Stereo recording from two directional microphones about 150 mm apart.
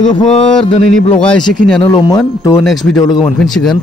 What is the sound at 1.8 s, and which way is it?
Speech, 30° left (ahead or behind).